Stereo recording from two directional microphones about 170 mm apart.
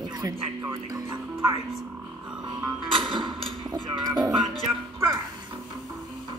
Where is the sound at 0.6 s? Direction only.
20° right (ahead or behind).